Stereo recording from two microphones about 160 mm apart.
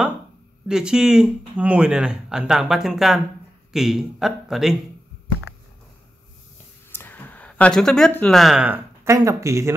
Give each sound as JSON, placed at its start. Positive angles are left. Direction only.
{"t": 0.7, "sound": "speech", "side_deg": -5}
{"t": 6.9, "sound": "a sound", "side_deg": 10}
{"t": 8.2, "sound": "speech", "side_deg": 0}
{"t": 9.0, "sound": "speech", "side_deg": -20}